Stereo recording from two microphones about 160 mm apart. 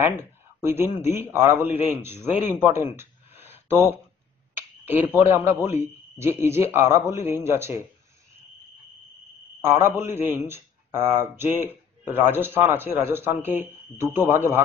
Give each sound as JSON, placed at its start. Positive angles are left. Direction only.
{"t": 0.6, "sound": "a man's voice", "side_deg": -15}
{"t": 9.6, "sound": "a man's voice", "side_deg": -15}